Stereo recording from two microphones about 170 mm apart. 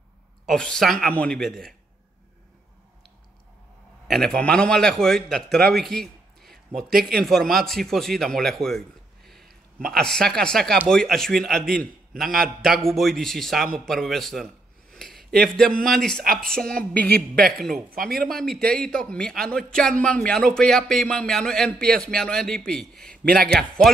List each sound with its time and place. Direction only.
0.5 s a man's voice: 5° left (ahead or behind)
4.1 s a man's voice: 5° left (ahead or behind)
5.7 s a sound: centre (ahead or behind)
7.2 s a man's voice: centre (ahead or behind)
17.0 s speech: 70° right (ahead or behind)
17.5 s a man's voice: centre (ahead or behind)
23.2 s a man's voice: 60° right (ahead or behind)